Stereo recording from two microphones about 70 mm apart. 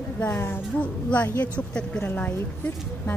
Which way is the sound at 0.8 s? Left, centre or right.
Left.